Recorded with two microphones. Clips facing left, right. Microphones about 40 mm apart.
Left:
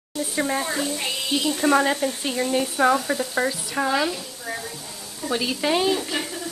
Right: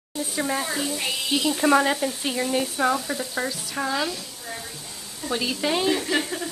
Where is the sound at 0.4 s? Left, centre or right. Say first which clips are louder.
Left 2 dB; centre.